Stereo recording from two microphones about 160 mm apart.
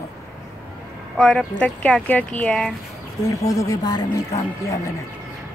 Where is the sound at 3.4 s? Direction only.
20° left (ahead or behind).